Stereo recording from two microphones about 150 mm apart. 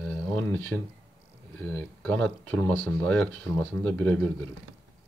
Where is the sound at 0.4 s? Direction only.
10° left (ahead or behind).